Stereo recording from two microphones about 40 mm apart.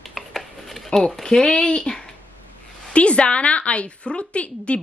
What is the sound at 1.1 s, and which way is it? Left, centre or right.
A woman's voice, centre.